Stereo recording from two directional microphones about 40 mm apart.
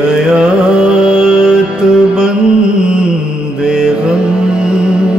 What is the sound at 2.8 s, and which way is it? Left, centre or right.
Music, right.